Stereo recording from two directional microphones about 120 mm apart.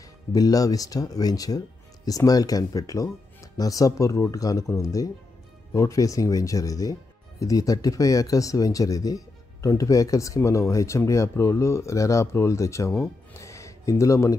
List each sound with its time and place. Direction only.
0.3 s speech: 30° left (ahead or behind)
13.3 s music: 25° left (ahead or behind)